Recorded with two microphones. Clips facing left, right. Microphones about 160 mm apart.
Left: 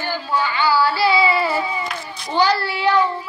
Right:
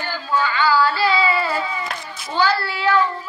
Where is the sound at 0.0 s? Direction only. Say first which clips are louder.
Even; 15° left (ahead or behind).